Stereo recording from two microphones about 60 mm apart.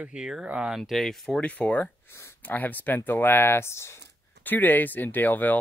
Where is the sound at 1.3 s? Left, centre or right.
Left.